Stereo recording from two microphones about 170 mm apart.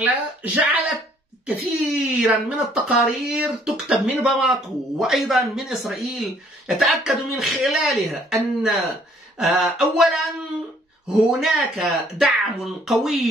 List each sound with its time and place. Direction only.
0.0 s speech: 10° right (ahead or behind)
11.2 s speech: 5° right (ahead or behind)